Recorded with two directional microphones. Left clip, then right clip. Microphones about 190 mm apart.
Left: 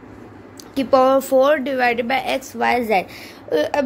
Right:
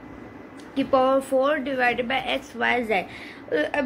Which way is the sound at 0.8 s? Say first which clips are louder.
Left 6 dB; 60° left (ahead or behind).